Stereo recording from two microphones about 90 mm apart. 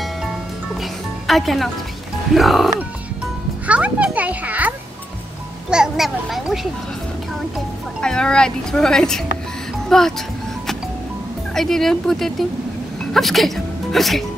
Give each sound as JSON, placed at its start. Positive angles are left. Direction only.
{"t": 0.7, "sound": "a child's voice", "side_deg": 0}
{"t": 3.6, "sound": "a child's voice", "side_deg": -15}
{"t": 5.7, "sound": "a child's voice", "side_deg": -5}
{"t": 8.0, "sound": "speech", "side_deg": 10}
{"t": 11.5, "sound": "a child's voice", "side_deg": 5}